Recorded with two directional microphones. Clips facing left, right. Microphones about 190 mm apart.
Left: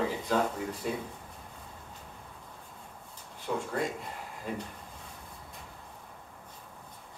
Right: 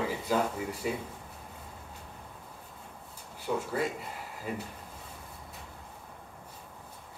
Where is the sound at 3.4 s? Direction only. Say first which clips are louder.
Right 1 dB; 5° right (ahead or behind).